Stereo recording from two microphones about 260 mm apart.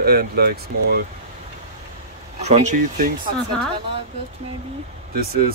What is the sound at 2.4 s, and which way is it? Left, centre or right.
Speech, right.